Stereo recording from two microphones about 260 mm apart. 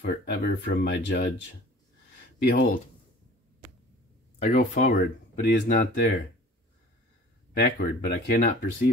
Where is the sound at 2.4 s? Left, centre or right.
Left.